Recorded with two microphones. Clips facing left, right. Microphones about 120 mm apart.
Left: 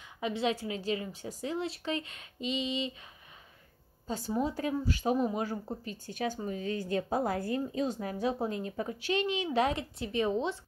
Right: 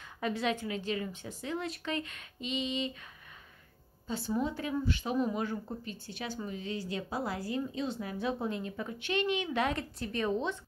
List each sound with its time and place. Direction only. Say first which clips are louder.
0.2 s speech: left 1 dB; 25° left (ahead or behind)
4.3 s speech: left 2 dB; 35° left (ahead or behind)
5.9 s speech: left 5 dB; 45° left (ahead or behind)
9.8 s a woman's voice: left 3 dB; 20° left (ahead or behind)